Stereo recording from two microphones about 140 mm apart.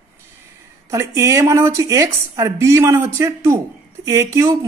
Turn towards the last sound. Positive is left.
turn(degrees=-20)  # may be behind; listen again after turning